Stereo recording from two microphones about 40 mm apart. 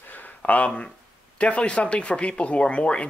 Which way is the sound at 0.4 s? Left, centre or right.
Left.